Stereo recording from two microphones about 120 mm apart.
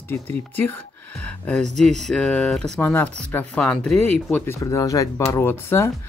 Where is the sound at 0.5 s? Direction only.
15° left (ahead or behind).